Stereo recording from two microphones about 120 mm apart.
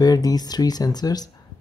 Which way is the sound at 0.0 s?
30° left (ahead or behind).